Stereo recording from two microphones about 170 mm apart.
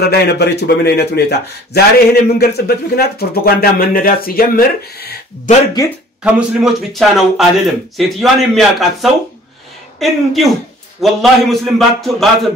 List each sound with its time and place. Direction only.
0.0 s a man's voice: 70° left (ahead or behind)
6.2 s a man's voice: centre (ahead or behind)